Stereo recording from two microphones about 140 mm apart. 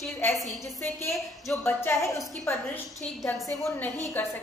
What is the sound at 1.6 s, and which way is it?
A woman's voice, 15° left (ahead or behind).